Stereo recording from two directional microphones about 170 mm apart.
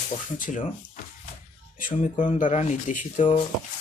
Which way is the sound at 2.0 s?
50° left (ahead or behind).